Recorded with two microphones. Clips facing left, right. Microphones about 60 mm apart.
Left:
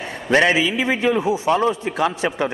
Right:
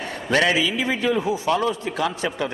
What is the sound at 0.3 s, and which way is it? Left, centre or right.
A man's voice, left.